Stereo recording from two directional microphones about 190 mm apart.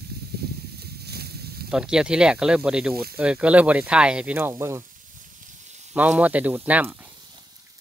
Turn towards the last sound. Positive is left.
turn(degrees=-10)  # may be behind; listen again after turning